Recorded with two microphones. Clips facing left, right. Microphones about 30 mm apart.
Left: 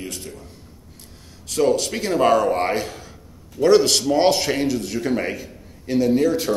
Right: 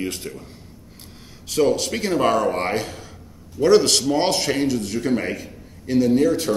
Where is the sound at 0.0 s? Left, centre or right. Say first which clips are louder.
Right 5 dB; right.